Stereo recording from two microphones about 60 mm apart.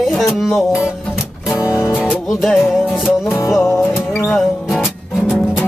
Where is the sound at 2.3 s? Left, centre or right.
Centre.